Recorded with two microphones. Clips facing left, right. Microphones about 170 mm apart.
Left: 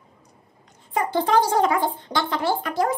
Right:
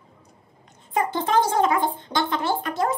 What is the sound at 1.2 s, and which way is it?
Speech, 25° right (ahead or behind).